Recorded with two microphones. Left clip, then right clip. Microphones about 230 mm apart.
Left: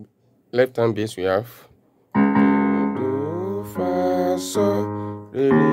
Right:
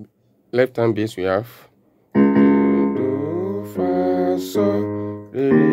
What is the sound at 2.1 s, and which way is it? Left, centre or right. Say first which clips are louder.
Keyboard: right 3 dB; centre.